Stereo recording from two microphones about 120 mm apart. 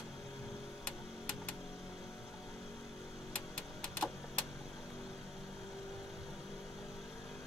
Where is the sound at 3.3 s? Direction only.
5° left (ahead or behind).